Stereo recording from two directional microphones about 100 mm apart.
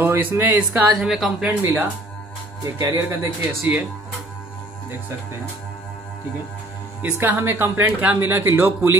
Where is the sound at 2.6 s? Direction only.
35° right (ahead or behind).